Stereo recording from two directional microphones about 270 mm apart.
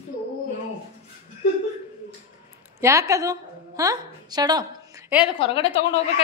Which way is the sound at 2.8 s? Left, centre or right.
Centre.